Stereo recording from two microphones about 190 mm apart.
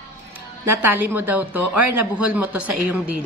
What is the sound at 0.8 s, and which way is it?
A woman's voice, 10° right (ahead or behind).